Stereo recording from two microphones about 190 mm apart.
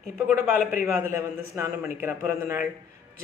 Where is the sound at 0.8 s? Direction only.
15° right (ahead or behind).